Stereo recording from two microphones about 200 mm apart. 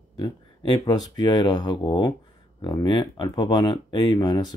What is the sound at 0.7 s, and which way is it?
Speech, 20° left (ahead or behind).